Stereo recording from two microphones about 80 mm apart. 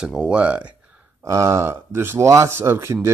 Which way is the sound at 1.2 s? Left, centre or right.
Right.